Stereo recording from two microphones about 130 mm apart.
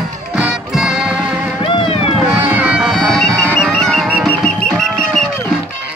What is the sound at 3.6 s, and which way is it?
Music, centre (ahead or behind).